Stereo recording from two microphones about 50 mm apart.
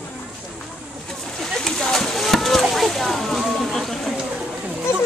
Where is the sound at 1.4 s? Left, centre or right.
Centre.